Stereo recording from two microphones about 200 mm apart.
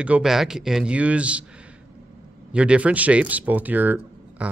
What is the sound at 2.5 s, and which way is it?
Speech, 5° right (ahead or behind).